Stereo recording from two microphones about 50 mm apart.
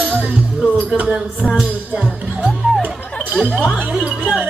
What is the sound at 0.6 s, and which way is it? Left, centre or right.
Music, right.